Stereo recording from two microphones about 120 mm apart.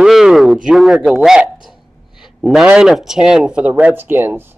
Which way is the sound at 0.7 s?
5° right (ahead or behind).